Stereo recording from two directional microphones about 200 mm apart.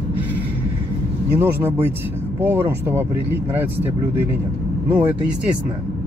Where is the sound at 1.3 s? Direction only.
10° right (ahead or behind).